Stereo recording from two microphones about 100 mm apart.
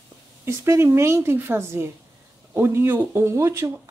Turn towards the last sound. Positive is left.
turn(degrees=-30)  # may be behind; listen again after turning